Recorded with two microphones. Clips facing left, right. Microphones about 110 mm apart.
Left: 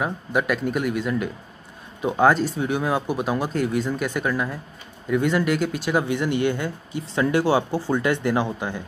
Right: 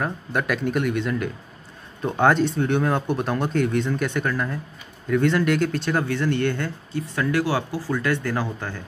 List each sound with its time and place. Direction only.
0.0 s speech: 5° left (ahead or behind)